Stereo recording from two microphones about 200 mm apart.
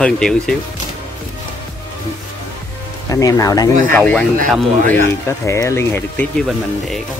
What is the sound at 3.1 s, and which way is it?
Speech, 15° left (ahead or behind).